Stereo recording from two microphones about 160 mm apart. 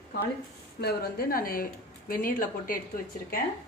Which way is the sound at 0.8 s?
70° left (ahead or behind).